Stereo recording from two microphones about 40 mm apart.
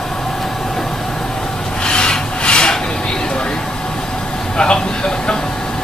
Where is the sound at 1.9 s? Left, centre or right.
Left.